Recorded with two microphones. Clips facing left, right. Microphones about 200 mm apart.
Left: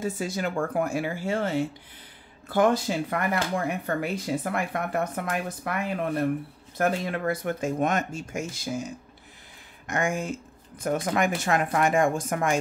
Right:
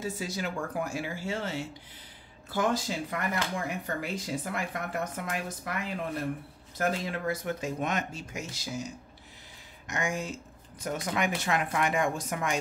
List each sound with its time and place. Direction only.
0.0 s speech: 50° left (ahead or behind)